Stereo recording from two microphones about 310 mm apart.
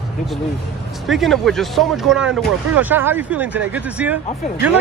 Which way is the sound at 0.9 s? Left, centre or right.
Centre.